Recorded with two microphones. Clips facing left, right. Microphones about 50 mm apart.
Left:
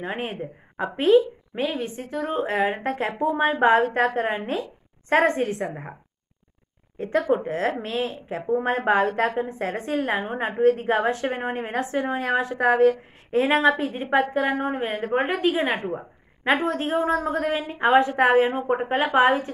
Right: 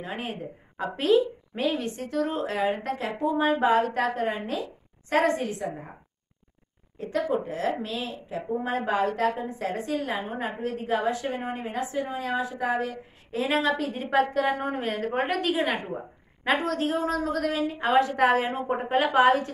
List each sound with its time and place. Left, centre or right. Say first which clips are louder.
0.0 s a woman's voice: left 4 dB; left
7.0 s a woman's voice: left 5 dB; left; by 19.5 s centre